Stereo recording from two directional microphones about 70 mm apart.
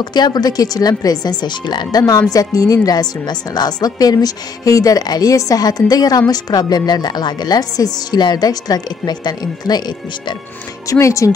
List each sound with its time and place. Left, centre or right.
0.0 s a woman's voice: left
1.4 s a woman's voice: left
10.9 s speech: left